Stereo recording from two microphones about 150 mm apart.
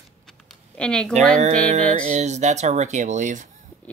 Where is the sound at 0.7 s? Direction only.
5° left (ahead or behind).